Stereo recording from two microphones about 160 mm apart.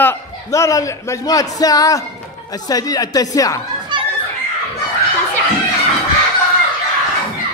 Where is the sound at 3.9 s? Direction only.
30° right (ahead or behind).